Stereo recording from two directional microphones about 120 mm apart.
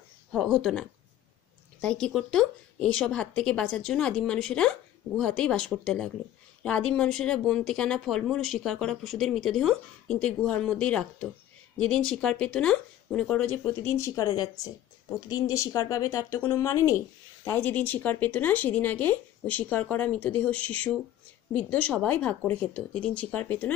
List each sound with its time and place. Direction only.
0.3 s speech: centre (ahead or behind); by 14.2 s 25° left (ahead or behind)
14.2 s a woman's voice: 35° left (ahead or behind); by 23.7 s 15° left (ahead or behind)